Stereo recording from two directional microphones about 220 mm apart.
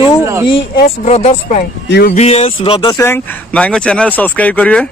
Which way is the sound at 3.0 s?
10° left (ahead or behind).